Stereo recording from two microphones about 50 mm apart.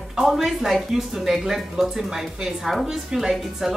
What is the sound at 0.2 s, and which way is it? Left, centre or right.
Speech, centre.